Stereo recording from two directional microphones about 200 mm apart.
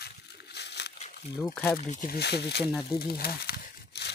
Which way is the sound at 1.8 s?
40° left (ahead or behind).